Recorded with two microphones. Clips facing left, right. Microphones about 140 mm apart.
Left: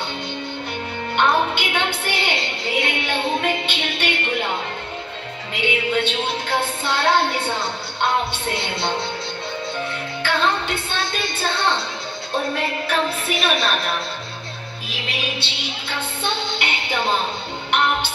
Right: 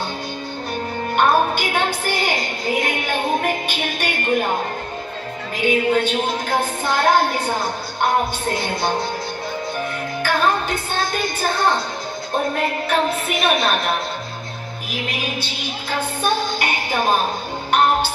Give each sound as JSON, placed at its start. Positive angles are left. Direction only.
{"t": 1.1, "sound": "a woman's voice", "side_deg": -45}
{"t": 5.5, "sound": "music", "side_deg": -40}
{"t": 6.1, "sound": "a woman's voice", "side_deg": -45}
{"t": 10.2, "sound": "music", "side_deg": -45}
{"t": 11.4, "sound": "a woman's voice", "side_deg": -45}
{"t": 15.0, "sound": "music", "side_deg": 25}
{"t": 15.6, "sound": "a woman's voice", "side_deg": -45}
{"t": 17.6, "sound": "music", "side_deg": -45}